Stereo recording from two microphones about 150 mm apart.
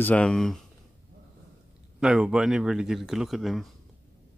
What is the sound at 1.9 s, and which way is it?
Speech, 5° right (ahead or behind).